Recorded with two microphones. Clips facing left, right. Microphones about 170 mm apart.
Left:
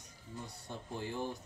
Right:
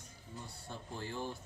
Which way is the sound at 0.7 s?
15° left (ahead or behind).